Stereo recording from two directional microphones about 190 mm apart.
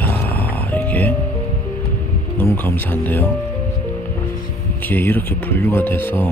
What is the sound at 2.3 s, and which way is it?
Speech, 10° left (ahead or behind).